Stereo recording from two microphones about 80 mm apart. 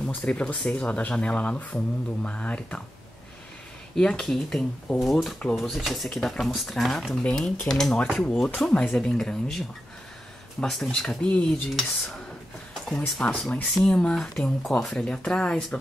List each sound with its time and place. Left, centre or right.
0.0 s speech: centre
3.9 s speech: centre
13.0 s speech: centre